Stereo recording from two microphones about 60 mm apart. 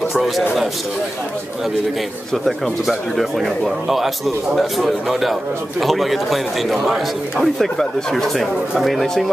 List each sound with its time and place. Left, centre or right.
0.1 s a man's voice: centre
2.3 s a man's voice: centre